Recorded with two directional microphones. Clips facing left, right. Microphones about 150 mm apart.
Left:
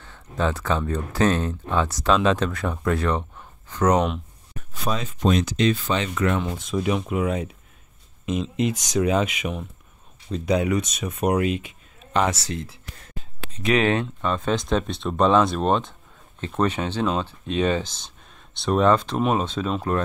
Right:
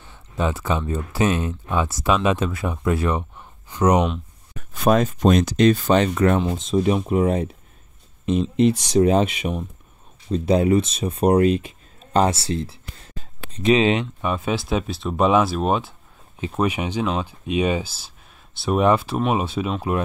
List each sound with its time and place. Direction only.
0.0 s speech: 10° right (ahead or behind)
4.7 s speech: 55° right (ahead or behind)
6.4 s speech: 25° right (ahead or behind); by 20.0 s 10° right (ahead or behind)